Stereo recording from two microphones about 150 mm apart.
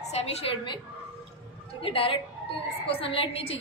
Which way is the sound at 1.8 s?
35° left (ahead or behind).